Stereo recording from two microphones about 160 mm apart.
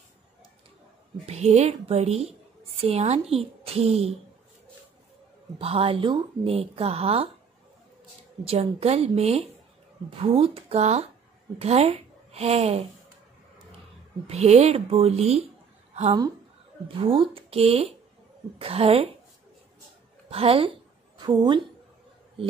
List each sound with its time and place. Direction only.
1.2 s speech: 40° right (ahead or behind)
5.6 s speech: 35° right (ahead or behind)
8.5 s a woman's voice: 40° right (ahead or behind)
14.2 s speech: 40° right (ahead or behind)
15.9 s a sound: 45° right (ahead or behind)
16.8 s speech: 35° right (ahead or behind)
20.2 s speech: 35° right (ahead or behind)